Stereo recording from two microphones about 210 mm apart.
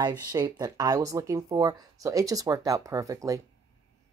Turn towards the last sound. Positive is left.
turn(degrees=-15)  # may be behind; listen again after turning